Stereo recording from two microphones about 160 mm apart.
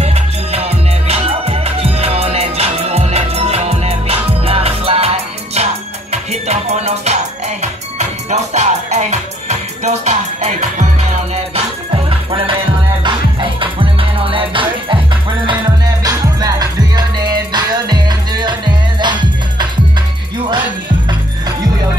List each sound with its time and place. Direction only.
0.0 s music: 40° right (ahead or behind)
11.5 s music: 35° right (ahead or behind)
16.0 s music: 25° right (ahead or behind)